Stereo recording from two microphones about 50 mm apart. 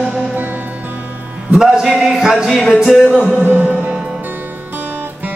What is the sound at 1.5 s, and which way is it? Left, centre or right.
Speech, centre.